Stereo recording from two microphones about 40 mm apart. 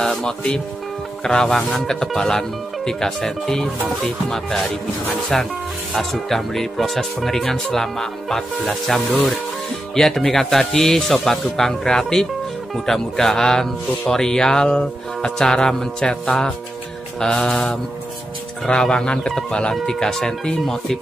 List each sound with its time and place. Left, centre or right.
0.0 s speech: centre
17.2 s speech: centre
18.8 s speech: left